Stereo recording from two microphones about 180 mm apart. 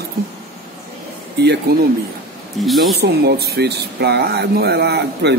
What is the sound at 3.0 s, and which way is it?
Speech, 65° right (ahead or behind).